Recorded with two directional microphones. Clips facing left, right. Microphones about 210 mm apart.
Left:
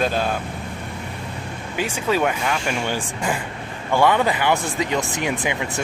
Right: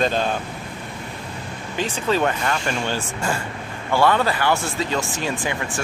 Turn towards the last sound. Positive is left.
turn(degrees=20)  # may be behind; listen again after turning